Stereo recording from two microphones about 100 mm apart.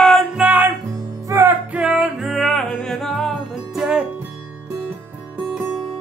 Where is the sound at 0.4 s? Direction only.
15° right (ahead or behind).